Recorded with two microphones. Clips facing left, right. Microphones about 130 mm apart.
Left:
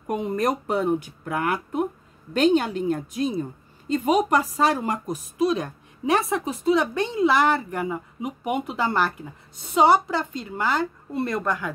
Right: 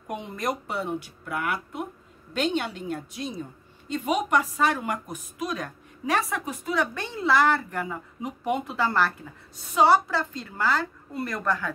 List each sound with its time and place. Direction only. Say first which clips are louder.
0.1 s speech: left 6 dB; 40° left (ahead or behind); by 11.7 s 15° left (ahead or behind)